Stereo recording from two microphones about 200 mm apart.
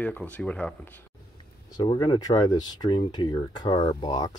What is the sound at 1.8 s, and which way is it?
Speech, 25° left (ahead or behind).